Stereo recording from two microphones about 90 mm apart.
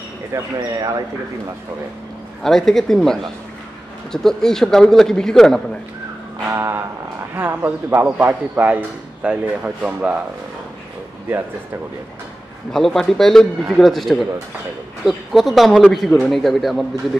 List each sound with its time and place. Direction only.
0.3 s speech: 40° right (ahead or behind)
2.4 s a man's voice: 5° left (ahead or behind)
6.5 s speech: 30° right (ahead or behind); by 10.1 s 15° right (ahead or behind)
12.7 s a man's voice: 5° left (ahead or behind)